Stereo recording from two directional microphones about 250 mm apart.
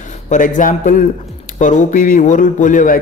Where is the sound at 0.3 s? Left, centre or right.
Left.